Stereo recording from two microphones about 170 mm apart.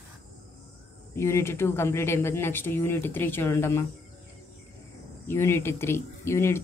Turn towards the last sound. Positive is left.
turn(degrees=15)  # may be behind; listen again after turning